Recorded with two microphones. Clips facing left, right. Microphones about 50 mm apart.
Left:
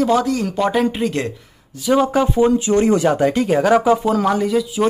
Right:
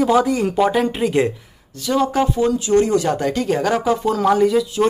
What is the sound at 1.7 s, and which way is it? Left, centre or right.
Speech, centre.